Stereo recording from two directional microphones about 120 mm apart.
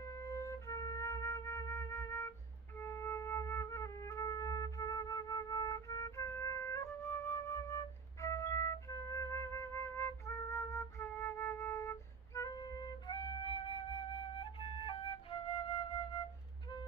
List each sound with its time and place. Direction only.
0.0 s flute: 25° left (ahead or behind); by 16.0 s 45° left (ahead or behind)